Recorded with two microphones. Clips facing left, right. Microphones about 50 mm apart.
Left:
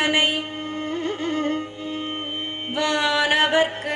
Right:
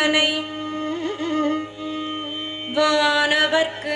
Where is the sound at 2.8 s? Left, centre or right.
Left.